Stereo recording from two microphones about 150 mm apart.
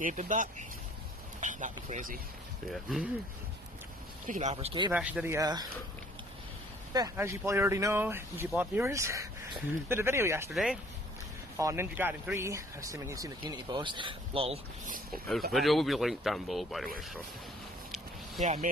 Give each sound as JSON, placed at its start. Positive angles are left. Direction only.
{"t": 0.0, "sound": "speech", "side_deg": -55}
{"t": 2.7, "sound": "speech", "side_deg": 0}
{"t": 4.3, "sound": "speech", "side_deg": -50}
{"t": 4.9, "sound": "speech", "side_deg": -10}
{"t": 6.9, "sound": "speech", "side_deg": -20}
{"t": 10.5, "sound": "speech", "side_deg": 0}
{"t": 11.5, "sound": "speech", "side_deg": -20}
{"t": 15.0, "sound": "speech", "side_deg": 0}
{"t": 18.4, "sound": "speech", "side_deg": -50}